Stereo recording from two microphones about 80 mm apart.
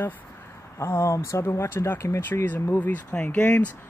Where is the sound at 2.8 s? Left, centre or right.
Centre.